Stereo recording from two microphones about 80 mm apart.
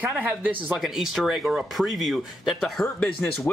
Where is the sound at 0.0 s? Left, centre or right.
Right.